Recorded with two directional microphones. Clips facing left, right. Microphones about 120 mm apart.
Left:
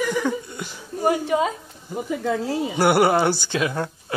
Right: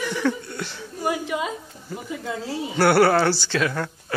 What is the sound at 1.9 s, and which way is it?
A man's voice, 15° left (ahead or behind).